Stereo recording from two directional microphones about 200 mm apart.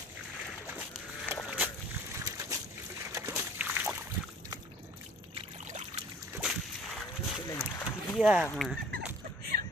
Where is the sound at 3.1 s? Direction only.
10° right (ahead or behind).